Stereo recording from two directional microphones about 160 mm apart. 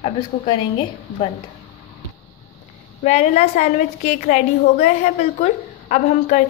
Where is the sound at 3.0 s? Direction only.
45° left (ahead or behind).